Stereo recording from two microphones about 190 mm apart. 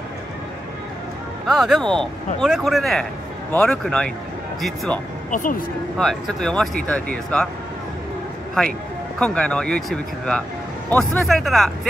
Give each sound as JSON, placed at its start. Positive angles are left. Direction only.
{"t": 1.5, "sound": "speech", "side_deg": 0}
{"t": 5.3, "sound": "speech", "side_deg": 45}
{"t": 5.9, "sound": "speech", "side_deg": 0}
{"t": 9.2, "sound": "speech", "side_deg": 5}